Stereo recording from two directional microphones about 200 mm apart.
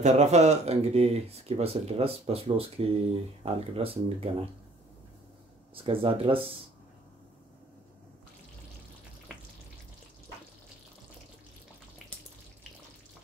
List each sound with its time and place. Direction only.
0.0 s speech: 35° right (ahead or behind)
5.8 s speech: 25° right (ahead or behind)